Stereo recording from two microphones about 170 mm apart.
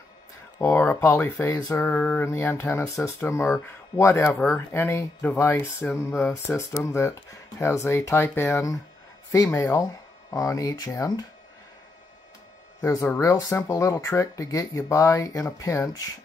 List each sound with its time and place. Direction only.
0.6 s speech: 15° left (ahead or behind)
12.8 s speech: 15° left (ahead or behind)